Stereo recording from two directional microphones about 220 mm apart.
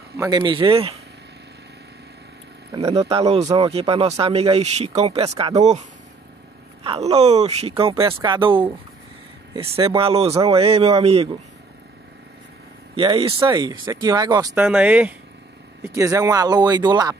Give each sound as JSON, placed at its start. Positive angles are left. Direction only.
{"t": 0.2, "sound": "speech", "side_deg": -20}
{"t": 2.7, "sound": "speech", "side_deg": -25}
{"t": 6.8, "sound": "speech", "side_deg": -25}
{"t": 12.9, "sound": "speech", "side_deg": -25}